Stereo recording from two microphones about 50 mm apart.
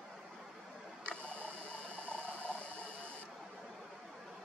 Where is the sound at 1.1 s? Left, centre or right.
Left.